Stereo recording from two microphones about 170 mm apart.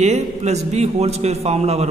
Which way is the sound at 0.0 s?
40° right (ahead or behind).